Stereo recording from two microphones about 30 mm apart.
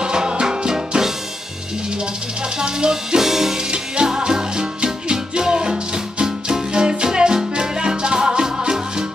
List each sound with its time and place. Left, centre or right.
0.0 s music: right
2.6 s music: right
3.2 s music: centre
3.7 s music: right